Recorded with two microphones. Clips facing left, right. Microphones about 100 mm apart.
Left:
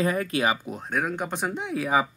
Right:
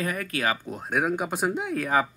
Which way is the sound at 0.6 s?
Centre (ahead or behind).